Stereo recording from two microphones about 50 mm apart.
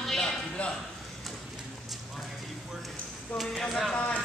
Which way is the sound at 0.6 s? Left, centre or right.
Left.